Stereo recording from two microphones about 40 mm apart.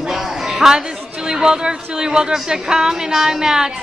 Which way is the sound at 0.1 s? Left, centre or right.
Centre.